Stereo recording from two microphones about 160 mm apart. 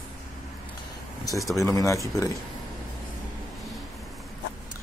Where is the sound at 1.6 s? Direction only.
20° left (ahead or behind).